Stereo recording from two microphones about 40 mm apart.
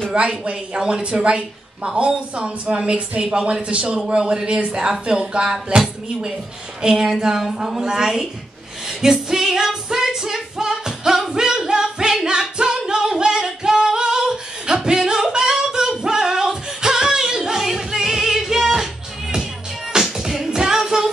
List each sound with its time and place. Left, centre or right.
0.1 s a woman's voice: right
6.8 s a sound: centre
8.8 s female singing: centre
17.6 s music: centre